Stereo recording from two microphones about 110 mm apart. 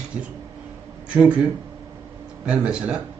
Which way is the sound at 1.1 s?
10° right (ahead or behind).